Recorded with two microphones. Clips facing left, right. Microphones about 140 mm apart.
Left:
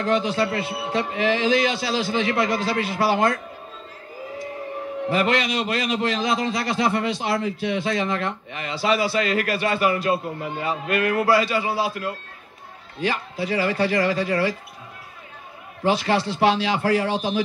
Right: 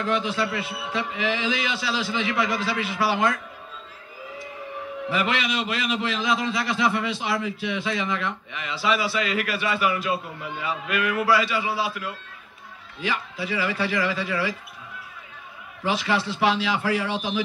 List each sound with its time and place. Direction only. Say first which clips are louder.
0.0 s a man's voice: left 3 dB; 35° left (ahead or behind)
5.0 s a man's voice: left 4 dB; 40° left (ahead or behind)
15.8 s a man's voice: left 4 dB; 35° left (ahead or behind)